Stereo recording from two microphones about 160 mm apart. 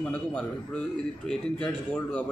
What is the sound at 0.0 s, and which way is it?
A man's voice, 5° left (ahead or behind).